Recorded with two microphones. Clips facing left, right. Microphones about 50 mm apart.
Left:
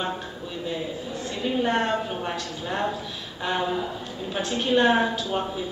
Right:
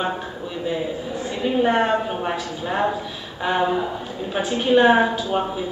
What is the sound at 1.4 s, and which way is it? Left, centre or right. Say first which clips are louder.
A woman's voice: right 5 dB; centre.